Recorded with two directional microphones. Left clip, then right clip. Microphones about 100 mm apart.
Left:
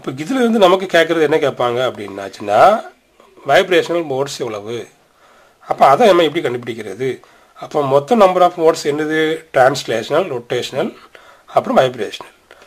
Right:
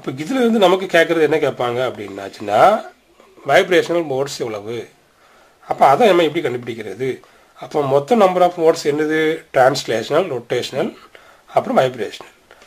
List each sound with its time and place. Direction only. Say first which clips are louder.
0.0 s speech: left 1 dB; 20° left (ahead or behind)